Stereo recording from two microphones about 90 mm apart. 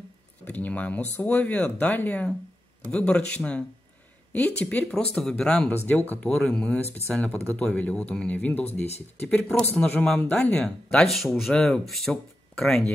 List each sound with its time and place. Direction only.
0.5 s speech: 15° left (ahead or behind)